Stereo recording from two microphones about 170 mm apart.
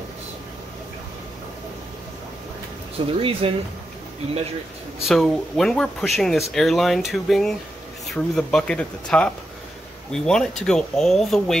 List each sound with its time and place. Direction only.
3.2 s speech: 35° right (ahead or behind)
5.0 s speech: centre (ahead or behind)